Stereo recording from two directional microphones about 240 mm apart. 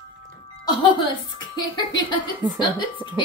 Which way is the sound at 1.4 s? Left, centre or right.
Centre.